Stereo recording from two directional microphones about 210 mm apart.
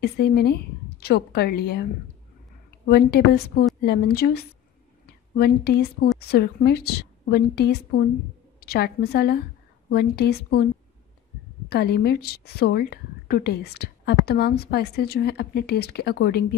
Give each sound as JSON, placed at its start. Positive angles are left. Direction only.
{"t": 0.0, "sound": "a woman's voice", "side_deg": 50}
{"t": 2.9, "sound": "a woman's voice", "side_deg": 50}
{"t": 11.7, "sound": "a woman's voice", "side_deg": 50}